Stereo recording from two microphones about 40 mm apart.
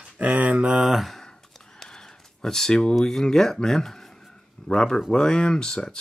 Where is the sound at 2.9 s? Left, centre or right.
Centre.